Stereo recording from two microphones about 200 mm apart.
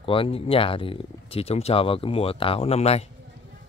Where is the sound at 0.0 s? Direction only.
25° left (ahead or behind).